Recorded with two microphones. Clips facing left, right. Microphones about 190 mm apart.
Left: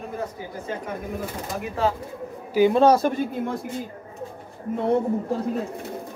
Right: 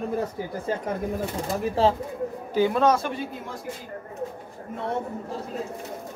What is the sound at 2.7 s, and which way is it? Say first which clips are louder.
Speech: left 4 dB; 30° left (ahead or behind).